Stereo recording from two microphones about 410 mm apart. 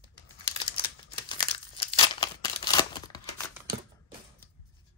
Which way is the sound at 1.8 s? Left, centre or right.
Centre.